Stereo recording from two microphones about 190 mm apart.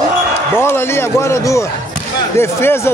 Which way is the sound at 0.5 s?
10° left (ahead or behind).